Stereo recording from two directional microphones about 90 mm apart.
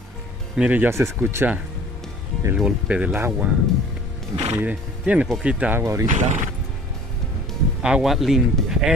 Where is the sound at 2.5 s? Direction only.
10° right (ahead or behind).